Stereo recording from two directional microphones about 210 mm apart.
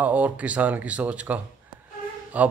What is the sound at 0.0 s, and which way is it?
A man's voice, 5° right (ahead or behind).